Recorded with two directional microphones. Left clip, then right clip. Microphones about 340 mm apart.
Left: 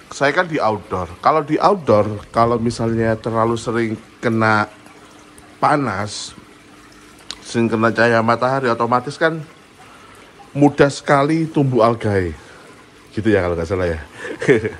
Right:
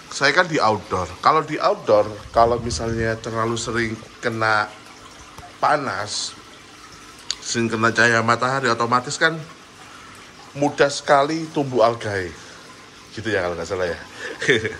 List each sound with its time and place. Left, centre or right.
0.1 s a man's voice: centre
10.8 s a man's voice: centre